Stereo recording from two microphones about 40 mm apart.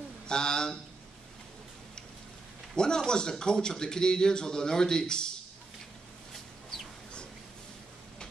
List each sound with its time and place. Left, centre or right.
0.3 s speech: centre
2.7 s a man's voice: centre